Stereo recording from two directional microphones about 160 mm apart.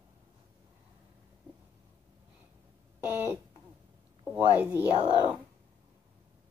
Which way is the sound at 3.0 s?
15° right (ahead or behind).